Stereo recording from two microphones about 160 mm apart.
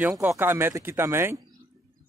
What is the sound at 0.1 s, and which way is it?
Speech, 15° right (ahead or behind).